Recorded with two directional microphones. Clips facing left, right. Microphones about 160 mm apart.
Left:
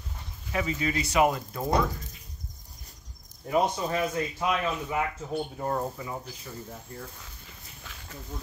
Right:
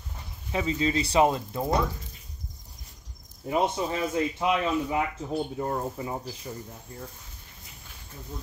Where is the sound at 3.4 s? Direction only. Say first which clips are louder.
Even; 20° right (ahead or behind).